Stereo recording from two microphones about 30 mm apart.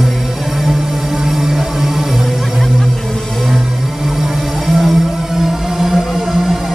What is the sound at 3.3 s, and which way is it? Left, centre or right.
Music, centre.